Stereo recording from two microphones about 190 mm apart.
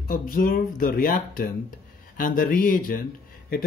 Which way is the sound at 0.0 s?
45° left (ahead or behind).